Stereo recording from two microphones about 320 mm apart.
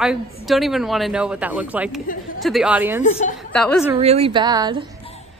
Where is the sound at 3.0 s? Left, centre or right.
Left.